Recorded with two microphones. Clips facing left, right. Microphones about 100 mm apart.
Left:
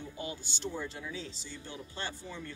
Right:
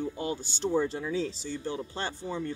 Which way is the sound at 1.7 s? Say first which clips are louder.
Right 7 dB; 30° right (ahead or behind).